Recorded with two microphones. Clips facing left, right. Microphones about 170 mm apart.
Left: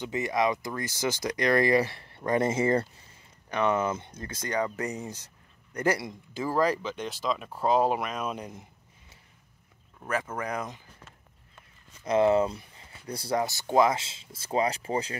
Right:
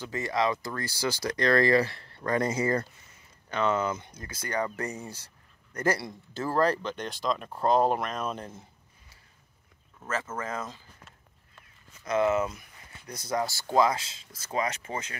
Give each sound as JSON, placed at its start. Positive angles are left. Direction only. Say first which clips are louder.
{"t": 0.0, "sound": "speech", "louder": "left 1 dB", "side_deg": 20}
{"t": 10.3, "sound": "speech", "louder": "left 2 dB", "side_deg": 15}
{"t": 12.0, "sound": "speech", "louder": "left 3 dB", "side_deg": 30}